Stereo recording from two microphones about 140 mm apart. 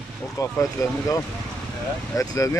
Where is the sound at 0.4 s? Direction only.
25° left (ahead or behind).